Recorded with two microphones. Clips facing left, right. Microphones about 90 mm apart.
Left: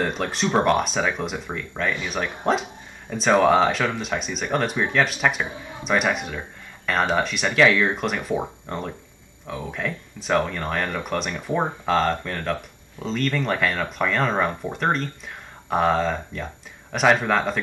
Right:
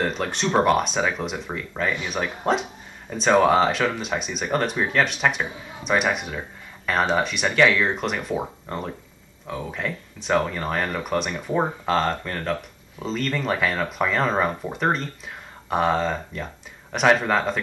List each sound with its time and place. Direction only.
0.0 s speech: centre (ahead or behind)